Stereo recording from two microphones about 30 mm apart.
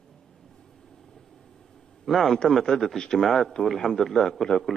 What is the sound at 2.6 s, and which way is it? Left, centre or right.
Speech, centre.